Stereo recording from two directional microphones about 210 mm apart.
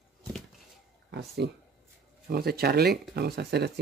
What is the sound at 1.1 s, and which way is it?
Speech, 50° right (ahead or behind).